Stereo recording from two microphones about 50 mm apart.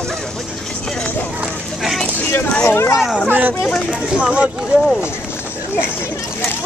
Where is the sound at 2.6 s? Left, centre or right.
Left.